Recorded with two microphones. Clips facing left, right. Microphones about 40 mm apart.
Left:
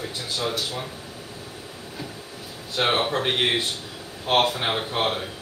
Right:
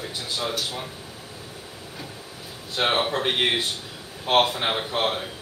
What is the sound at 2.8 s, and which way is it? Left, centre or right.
Speech, centre.